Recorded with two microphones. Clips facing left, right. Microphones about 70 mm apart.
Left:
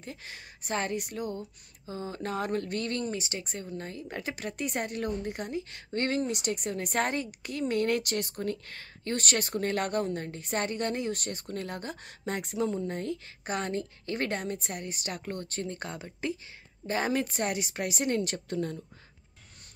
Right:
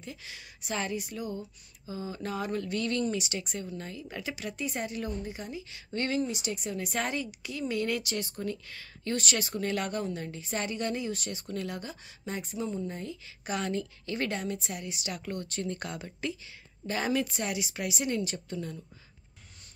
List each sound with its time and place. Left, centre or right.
0.0 s speech: left
13.5 s a woman's voice: left